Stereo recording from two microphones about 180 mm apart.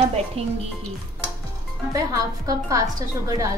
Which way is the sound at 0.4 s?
35° right (ahead or behind).